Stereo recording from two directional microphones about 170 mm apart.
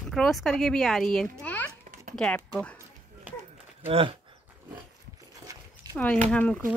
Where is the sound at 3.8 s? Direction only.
35° right (ahead or behind).